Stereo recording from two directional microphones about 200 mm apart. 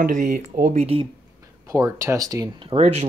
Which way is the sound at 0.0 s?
40° right (ahead or behind).